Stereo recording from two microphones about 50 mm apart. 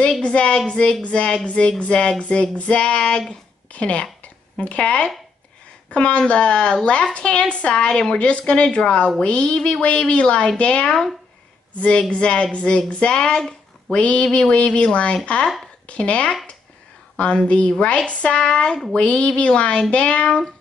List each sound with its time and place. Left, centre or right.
0.2 s female singing: left
12.1 s female singing: left